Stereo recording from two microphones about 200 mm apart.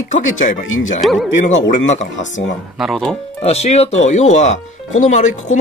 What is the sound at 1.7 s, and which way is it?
Speech, 35° left (ahead or behind).